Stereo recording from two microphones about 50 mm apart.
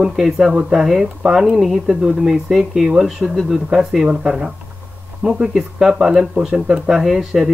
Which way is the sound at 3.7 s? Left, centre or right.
Centre.